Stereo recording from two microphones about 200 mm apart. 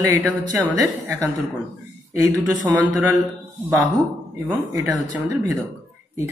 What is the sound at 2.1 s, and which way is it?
Speech, 15° right (ahead or behind).